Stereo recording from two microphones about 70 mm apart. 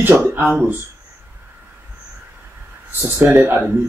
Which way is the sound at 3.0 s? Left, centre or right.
Right.